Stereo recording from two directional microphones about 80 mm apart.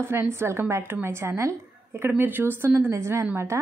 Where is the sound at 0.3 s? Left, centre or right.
Right.